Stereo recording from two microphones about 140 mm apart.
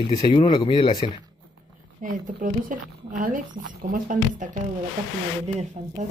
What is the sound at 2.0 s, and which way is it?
A woman's voice, 70° right (ahead or behind).